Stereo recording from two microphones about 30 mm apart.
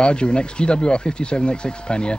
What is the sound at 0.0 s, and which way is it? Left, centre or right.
Speech, left.